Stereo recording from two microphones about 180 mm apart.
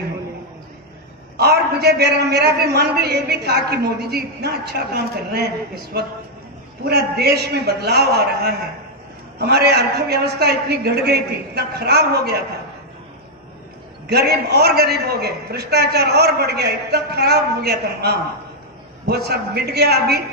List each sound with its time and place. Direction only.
1.3 s a man's voice: 65° right (ahead or behind)
14.0 s a man's voice: 60° right (ahead or behind)